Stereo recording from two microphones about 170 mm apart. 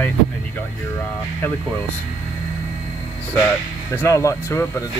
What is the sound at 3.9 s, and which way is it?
Speech, 15° left (ahead or behind).